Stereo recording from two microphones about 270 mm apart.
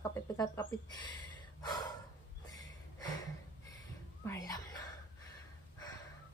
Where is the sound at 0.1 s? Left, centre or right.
Centre.